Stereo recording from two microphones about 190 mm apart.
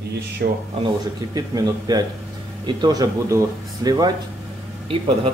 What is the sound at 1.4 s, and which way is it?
A man's voice, 20° right (ahead or behind).